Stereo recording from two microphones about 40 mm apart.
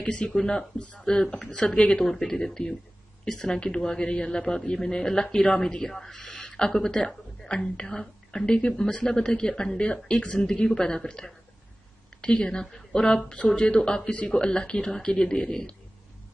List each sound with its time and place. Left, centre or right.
0.0 s a woman's voice: left
2.0 s a man's voice: centre
6.2 s a sound: left
6.5 s a man's voice: centre
10.3 s a woman's voice: centre